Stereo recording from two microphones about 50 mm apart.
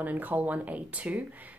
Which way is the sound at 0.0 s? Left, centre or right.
Right.